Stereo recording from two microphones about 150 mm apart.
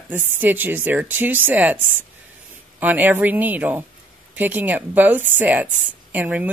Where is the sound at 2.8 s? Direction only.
10° right (ahead or behind).